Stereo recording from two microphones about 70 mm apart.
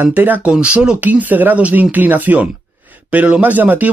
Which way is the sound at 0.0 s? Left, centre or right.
Right.